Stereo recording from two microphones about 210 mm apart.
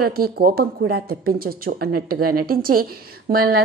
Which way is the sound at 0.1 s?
45° right (ahead or behind).